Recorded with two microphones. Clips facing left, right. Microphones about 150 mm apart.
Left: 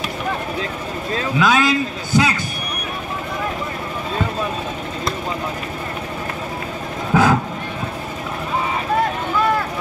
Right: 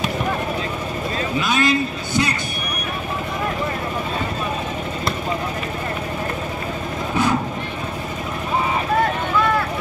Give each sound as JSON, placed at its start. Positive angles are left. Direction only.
{"t": 1.4, "sound": "a man's voice", "side_deg": 90}
{"t": 7.1, "sound": "vehicle", "side_deg": 90}